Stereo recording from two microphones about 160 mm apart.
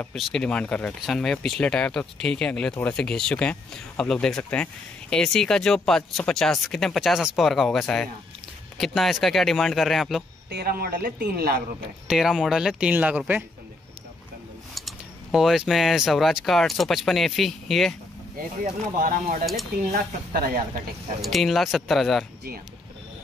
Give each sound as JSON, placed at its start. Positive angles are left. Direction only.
{"t": 0.0, "sound": "speech", "side_deg": 0}
{"t": 10.5, "sound": "speech", "side_deg": -70}
{"t": 12.1, "sound": "speech", "side_deg": -5}
{"t": 14.7, "sound": "speech", "side_deg": 0}
{"t": 18.6, "sound": "speech", "side_deg": -60}
{"t": 19.4, "sound": "speech", "side_deg": 0}
{"t": 19.9, "sound": "speech", "side_deg": -65}
{"t": 21.2, "sound": "speech", "side_deg": 0}